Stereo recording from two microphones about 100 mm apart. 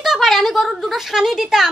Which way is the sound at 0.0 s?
Centre (ahead or behind).